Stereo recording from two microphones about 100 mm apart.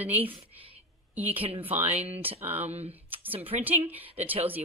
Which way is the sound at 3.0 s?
20° right (ahead or behind).